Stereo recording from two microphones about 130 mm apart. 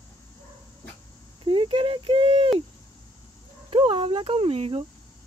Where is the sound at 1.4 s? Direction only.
40° right (ahead or behind).